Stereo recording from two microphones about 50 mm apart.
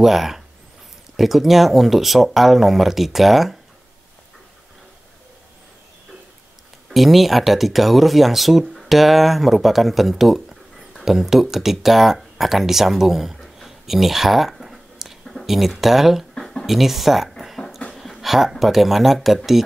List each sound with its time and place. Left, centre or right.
0.0 s speech: centre
6.9 s speech: centre
16.3 s a sound: centre
16.6 s speech: centre
17.3 s a sound: centre
17.9 s speech: centre